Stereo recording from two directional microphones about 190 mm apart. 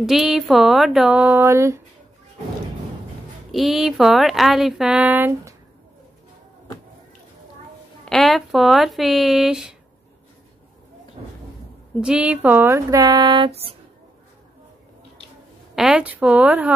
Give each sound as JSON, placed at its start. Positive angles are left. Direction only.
{"t": 0.0, "sound": "speech", "side_deg": 0}
{"t": 3.5, "sound": "speech", "side_deg": 0}
{"t": 8.0, "sound": "speech", "side_deg": 0}
{"t": 11.2, "sound": "cupboard open or close", "side_deg": -35}
{"t": 12.0, "sound": "speech", "side_deg": -5}
{"t": 15.7, "sound": "speech", "side_deg": -5}